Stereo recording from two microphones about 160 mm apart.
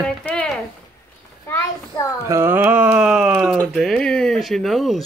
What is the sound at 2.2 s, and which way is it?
Speech, 15° right (ahead or behind).